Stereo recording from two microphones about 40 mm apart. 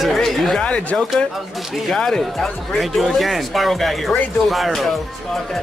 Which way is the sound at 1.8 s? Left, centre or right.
Centre.